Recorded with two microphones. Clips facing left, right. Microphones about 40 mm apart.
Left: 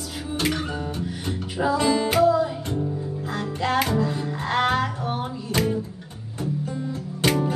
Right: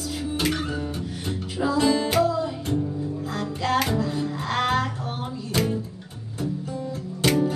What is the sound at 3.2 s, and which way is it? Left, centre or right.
Music, left.